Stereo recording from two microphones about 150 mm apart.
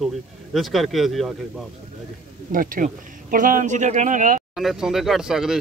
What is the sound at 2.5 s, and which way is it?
Speech, 65° right (ahead or behind).